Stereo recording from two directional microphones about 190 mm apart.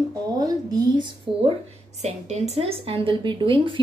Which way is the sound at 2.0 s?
35° right (ahead or behind).